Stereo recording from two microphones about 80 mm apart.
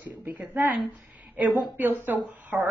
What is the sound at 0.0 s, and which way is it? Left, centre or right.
A woman's voice, right.